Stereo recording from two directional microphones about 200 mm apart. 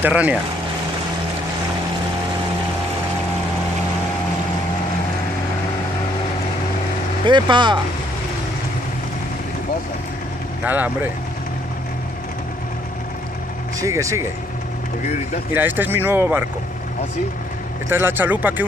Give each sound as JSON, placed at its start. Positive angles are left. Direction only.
{"t": 0.0, "sound": "speech", "side_deg": -5}
{"t": 7.2, "sound": "speech", "side_deg": -25}
{"t": 10.6, "sound": "speech", "side_deg": -10}
{"t": 13.7, "sound": "speech", "side_deg": -15}
{"t": 15.5, "sound": "speech", "side_deg": -10}
{"t": 17.8, "sound": "speech", "side_deg": -10}